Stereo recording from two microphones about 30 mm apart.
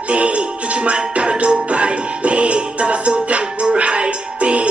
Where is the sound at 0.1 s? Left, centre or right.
Right.